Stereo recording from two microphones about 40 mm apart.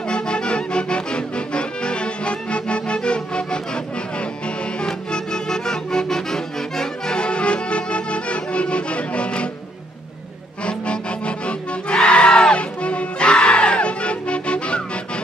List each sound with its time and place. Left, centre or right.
0.1 s accordion: left
4.8 s music: centre
10.6 s music: left